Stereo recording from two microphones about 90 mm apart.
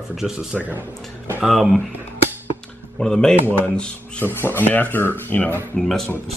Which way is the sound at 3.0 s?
10° left (ahead or behind).